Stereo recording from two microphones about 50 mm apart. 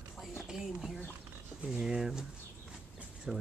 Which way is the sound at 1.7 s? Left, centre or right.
Centre.